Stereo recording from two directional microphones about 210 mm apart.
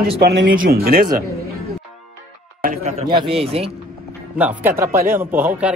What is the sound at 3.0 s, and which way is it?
Speech, 25° right (ahead or behind).